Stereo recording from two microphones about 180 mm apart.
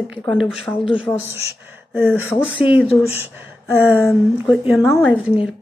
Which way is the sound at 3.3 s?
10° right (ahead or behind).